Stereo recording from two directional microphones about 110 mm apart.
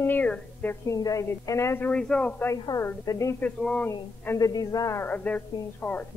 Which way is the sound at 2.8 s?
30° left (ahead or behind).